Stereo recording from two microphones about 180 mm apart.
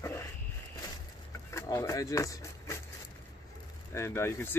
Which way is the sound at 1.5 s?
15° left (ahead or behind).